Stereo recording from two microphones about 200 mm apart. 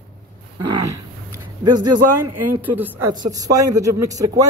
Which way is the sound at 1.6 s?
20° right (ahead or behind).